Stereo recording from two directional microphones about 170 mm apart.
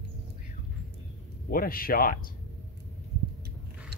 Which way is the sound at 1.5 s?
60° left (ahead or behind).